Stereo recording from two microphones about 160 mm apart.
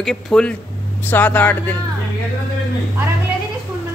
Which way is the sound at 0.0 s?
5° left (ahead or behind).